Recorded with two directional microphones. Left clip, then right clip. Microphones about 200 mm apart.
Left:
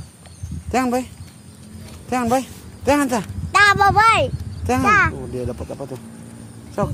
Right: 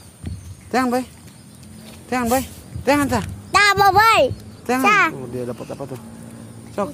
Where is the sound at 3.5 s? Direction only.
50° right (ahead or behind).